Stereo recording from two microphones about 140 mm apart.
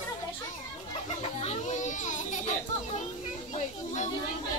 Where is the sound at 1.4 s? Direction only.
60° left (ahead or behind).